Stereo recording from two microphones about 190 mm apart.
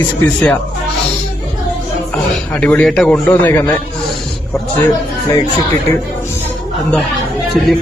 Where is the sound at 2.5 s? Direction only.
5° left (ahead or behind).